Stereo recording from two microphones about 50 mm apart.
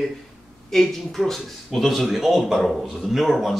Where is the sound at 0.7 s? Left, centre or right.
Centre.